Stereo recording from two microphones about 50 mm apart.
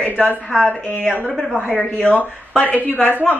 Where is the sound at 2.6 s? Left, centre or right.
Left.